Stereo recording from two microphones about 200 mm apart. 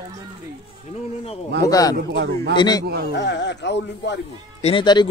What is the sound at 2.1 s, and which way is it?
Speech, 60° right (ahead or behind).